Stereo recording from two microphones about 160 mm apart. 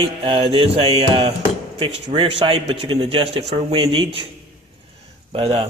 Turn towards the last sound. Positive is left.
turn(degrees=-35)  # may be behind; listen again after turning